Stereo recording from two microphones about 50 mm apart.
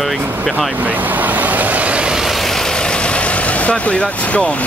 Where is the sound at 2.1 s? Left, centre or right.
Centre; by 4.6 s left.